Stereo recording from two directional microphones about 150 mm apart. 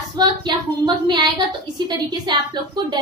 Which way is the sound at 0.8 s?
30° right (ahead or behind).